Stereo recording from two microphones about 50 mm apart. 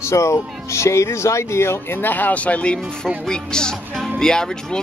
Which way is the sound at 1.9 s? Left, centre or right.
Left.